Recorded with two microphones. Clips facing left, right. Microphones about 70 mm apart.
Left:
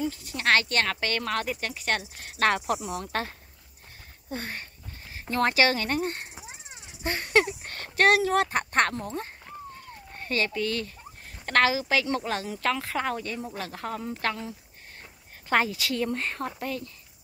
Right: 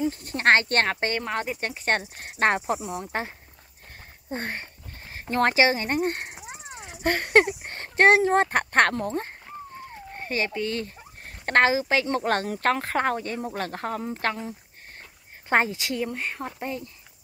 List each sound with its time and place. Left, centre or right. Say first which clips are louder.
0.1 s speech: right 4 dB; right
1.7 s speech: right 3 dB; right; by 3.3 s centre
4.3 s speech: right 3 dB; right
6.9 s speech: right 5 dB; right
7.6 s speech: right 3 dB; right
10.1 s speech: even; right
12.3 s speech: right 5 dB; right
15.5 s speech: right 2 dB; right
16.1 s speech: left 1 dB; centre
16.5 s speech: right 1 dB; right